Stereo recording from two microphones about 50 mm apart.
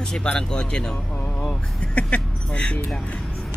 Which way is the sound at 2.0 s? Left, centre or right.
Left.